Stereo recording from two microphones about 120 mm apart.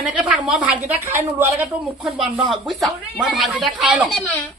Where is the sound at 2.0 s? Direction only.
Centre (ahead or behind).